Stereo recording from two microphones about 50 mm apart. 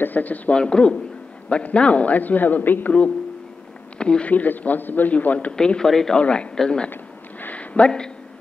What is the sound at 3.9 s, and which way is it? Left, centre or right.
Speech, left.